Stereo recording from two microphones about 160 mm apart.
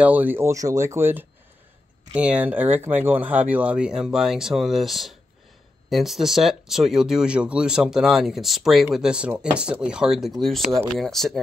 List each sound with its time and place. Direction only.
0.0 s speech: 10° right (ahead or behind)